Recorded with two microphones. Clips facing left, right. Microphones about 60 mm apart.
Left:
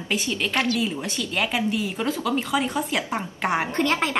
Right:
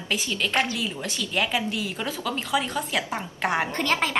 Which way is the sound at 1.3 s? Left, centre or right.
Centre.